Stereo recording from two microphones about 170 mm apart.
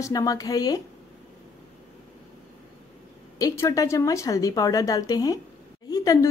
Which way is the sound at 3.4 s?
20° left (ahead or behind).